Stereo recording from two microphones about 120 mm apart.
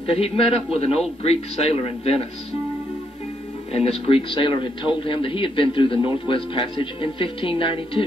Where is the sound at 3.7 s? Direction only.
55° left (ahead or behind).